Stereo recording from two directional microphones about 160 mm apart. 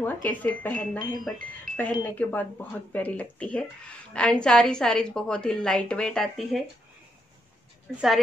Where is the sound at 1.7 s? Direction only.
60° right (ahead or behind).